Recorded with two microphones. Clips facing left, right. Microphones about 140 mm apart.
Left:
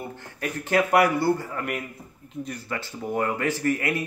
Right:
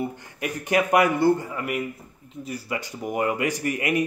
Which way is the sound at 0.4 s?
15° right (ahead or behind).